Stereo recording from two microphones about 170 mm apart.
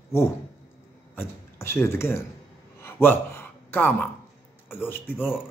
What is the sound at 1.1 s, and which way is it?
Speech, 15° left (ahead or behind).